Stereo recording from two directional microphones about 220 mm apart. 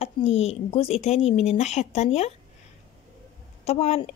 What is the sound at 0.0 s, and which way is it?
A woman's voice, 30° left (ahead or behind).